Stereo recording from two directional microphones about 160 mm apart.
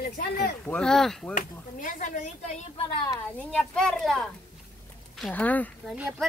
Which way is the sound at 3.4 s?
5° left (ahead or behind).